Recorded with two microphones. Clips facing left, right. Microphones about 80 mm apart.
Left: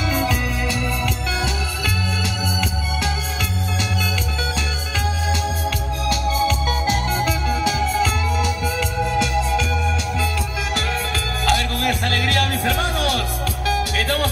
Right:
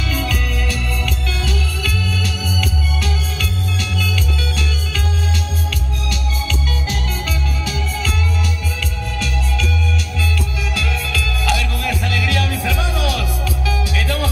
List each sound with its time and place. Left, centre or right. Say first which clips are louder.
0.1 s music: left 2 dB; left
6.0 s music: left 8 dB; left
9.1 s music: left 5 dB; centre
10.8 s music: even; left